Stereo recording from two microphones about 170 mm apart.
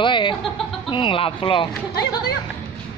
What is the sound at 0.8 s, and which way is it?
Speech, 30° left (ahead or behind).